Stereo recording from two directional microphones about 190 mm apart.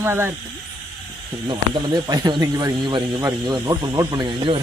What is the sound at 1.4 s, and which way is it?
Speech, 25° right (ahead or behind).